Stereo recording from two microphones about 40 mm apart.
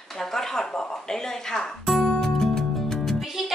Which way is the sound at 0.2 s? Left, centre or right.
Centre.